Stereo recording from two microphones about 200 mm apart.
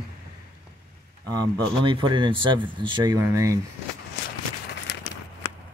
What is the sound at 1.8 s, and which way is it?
Speech, 25° right (ahead or behind).